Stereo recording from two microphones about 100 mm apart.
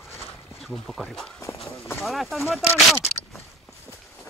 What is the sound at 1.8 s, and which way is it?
Speech, 25° left (ahead or behind).